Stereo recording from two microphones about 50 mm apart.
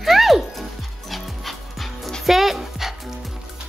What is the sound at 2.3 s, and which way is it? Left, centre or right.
Dog, centre.